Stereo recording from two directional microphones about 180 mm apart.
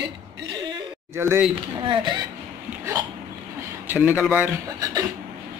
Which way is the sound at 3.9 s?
10° right (ahead or behind).